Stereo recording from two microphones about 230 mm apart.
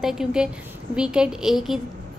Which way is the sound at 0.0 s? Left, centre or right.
Centre.